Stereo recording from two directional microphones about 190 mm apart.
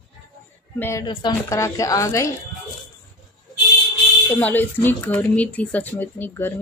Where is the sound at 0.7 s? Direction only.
15° left (ahead or behind).